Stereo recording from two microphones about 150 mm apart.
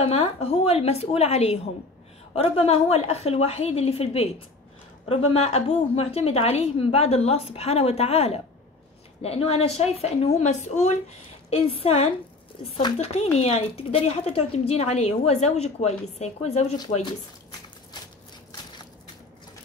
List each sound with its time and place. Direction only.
0.0 s a woman's voice: 40° left (ahead or behind)
12.5 s a sound: 35° left (ahead or behind)
12.9 s a woman's voice: 45° left (ahead or behind)